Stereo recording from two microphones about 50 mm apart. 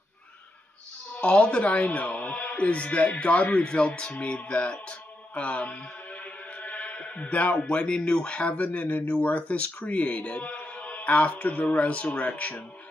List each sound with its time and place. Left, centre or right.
1.1 s speech: left